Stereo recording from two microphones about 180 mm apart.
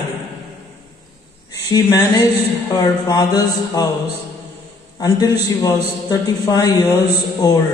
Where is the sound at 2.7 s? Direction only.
20° left (ahead or behind).